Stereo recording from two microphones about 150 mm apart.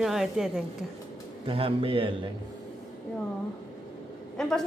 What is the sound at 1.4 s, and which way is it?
Speech, 40° right (ahead or behind).